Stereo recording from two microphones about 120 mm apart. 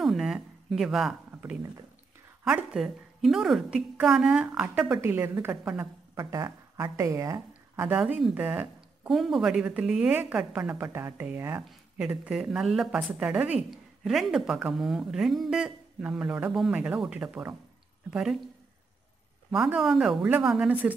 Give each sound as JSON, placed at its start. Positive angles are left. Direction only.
{"t": 0.0, "sound": "a sound", "side_deg": 0}
{"t": 2.4, "sound": "a woman's voice", "side_deg": -5}
{"t": 5.0, "sound": "a woman's voice", "side_deg": -25}
{"t": 8.0, "sound": "speech", "side_deg": 0}
{"t": 8.4, "sound": "speech", "side_deg": -15}
{"t": 9.1, "sound": "a woman's voice", "side_deg": 0}
{"t": 12.0, "sound": "a woman's voice", "side_deg": -5}
{"t": 19.5, "sound": "speech", "side_deg": 0}
{"t": 20.2, "sound": "a woman's voice", "side_deg": -15}